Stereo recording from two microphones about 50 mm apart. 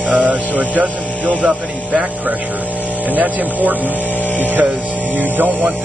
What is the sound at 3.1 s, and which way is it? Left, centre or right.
Music, right.